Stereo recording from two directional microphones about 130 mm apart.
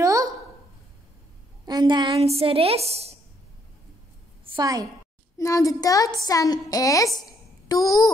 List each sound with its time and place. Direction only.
0.0 s a sound: 25° right (ahead or behind)
1.7 s a woman's voice: 35° right (ahead or behind)
2.1 s a woman's voice: 50° right (ahead or behind)
4.6 s a woman's voice: 25° right (ahead or behind)
5.4 s a child's voice: 25° left (ahead or behind)
7.2 s a sound: 30° left (ahead or behind)